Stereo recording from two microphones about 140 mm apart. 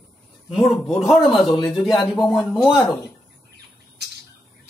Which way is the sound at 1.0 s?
Centre (ahead or behind).